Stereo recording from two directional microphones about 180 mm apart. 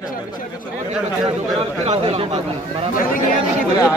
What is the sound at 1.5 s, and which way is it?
A man's voice, 35° right (ahead or behind).